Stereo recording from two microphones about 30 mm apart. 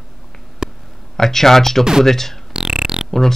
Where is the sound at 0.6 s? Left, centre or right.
Right.